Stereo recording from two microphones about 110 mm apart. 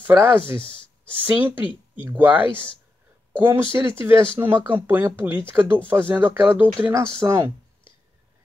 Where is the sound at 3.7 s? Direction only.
25° right (ahead or behind).